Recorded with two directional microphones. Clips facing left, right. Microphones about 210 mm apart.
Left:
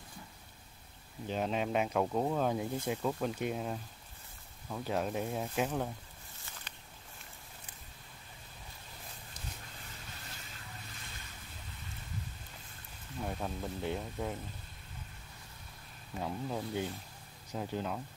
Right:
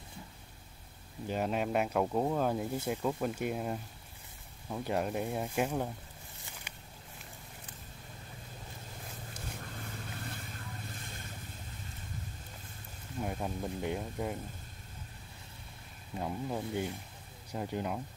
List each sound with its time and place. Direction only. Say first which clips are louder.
1.2 s speech: right 1 dB; 5° right (ahead or behind)
6.4 s a sound: right 1 dB; 10° right (ahead or behind)
10.1 s vehicle: right 7 dB; 55° right (ahead or behind)
13.2 s speech: right 2 dB; 10° right (ahead or behind)
16.2 s speech: right 1 dB; 10° right (ahead or behind)